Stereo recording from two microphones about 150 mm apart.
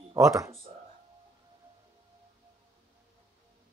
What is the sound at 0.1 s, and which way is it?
Speech, 20° right (ahead or behind).